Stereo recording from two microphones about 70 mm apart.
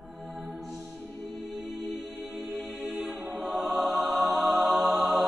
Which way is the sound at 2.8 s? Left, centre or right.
Centre.